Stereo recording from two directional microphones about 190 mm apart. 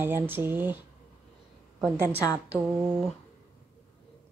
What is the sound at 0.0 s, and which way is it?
Speech, 10° right (ahead or behind).